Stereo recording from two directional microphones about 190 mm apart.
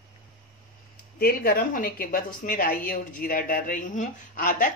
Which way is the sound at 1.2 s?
50° left (ahead or behind).